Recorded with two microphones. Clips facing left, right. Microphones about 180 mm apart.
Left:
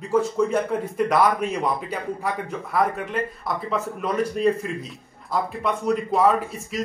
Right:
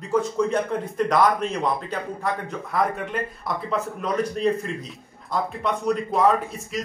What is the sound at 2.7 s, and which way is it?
Speech, centre (ahead or behind).